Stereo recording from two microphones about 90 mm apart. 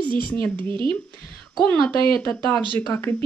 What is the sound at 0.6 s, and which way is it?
Speech, 65° right (ahead or behind).